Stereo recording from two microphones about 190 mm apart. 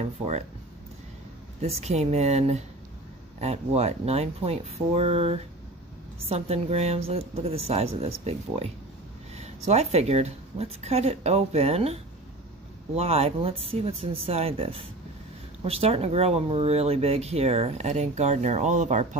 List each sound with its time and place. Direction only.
1.6 s speech: 35° right (ahead or behind)